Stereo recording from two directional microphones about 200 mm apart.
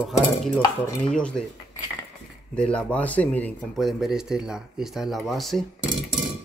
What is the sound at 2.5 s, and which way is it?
Speech, 5° left (ahead or behind).